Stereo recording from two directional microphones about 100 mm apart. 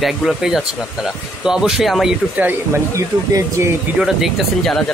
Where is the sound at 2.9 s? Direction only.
30° right (ahead or behind).